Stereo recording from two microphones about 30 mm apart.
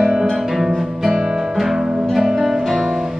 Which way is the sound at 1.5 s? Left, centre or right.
Centre.